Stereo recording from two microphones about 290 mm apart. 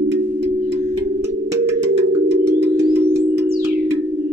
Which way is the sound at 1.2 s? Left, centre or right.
Centre.